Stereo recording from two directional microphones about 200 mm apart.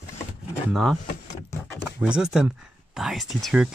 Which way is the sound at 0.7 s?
Centre (ahead or behind).